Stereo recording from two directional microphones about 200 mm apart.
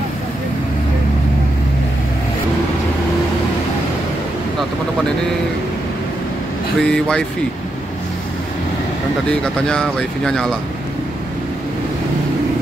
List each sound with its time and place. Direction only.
6.8 s speech: 5° left (ahead or behind)
9.3 s speech: 5° left (ahead or behind)